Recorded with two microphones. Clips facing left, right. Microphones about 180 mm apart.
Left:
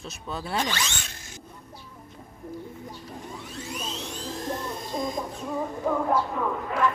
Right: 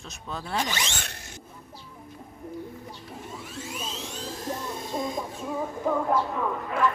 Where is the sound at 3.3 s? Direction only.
Centre (ahead or behind).